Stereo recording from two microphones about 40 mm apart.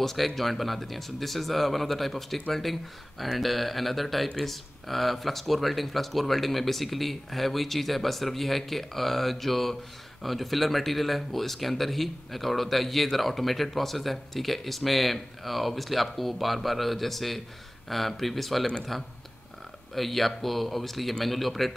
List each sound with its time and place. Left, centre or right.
0.0 s speech: centre